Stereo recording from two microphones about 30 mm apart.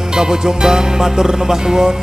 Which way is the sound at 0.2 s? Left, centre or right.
Right.